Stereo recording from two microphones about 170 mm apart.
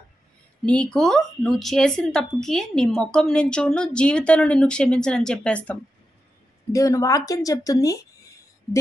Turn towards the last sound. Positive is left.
turn(degrees=20)  # may be behind; listen again after turning